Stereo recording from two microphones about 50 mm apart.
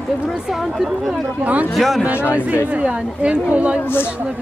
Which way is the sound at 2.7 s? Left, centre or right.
Right.